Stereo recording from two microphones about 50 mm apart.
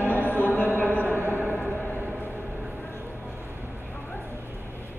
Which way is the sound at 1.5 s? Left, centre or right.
Left.